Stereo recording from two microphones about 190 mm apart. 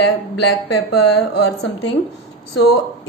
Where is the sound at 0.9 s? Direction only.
60° left (ahead or behind).